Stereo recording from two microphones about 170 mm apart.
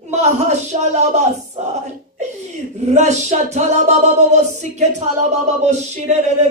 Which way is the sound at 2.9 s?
40° right (ahead or behind).